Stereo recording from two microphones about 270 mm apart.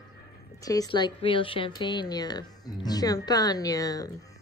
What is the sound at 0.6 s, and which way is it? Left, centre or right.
Speech, centre.